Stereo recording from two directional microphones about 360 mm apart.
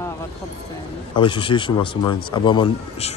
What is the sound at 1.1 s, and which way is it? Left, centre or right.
Speech, centre.